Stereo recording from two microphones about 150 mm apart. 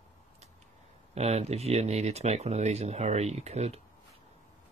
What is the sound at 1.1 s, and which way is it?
Speech, 45° right (ahead or behind).